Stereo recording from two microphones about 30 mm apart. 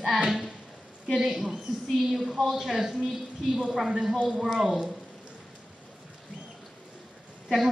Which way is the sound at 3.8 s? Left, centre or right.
Centre.